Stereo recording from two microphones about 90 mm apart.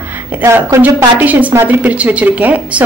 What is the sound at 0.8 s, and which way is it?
A woman's voice, 15° right (ahead or behind).